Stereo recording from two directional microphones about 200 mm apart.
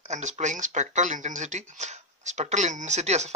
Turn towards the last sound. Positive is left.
turn(degrees=-35)  # may be behind; listen again after turning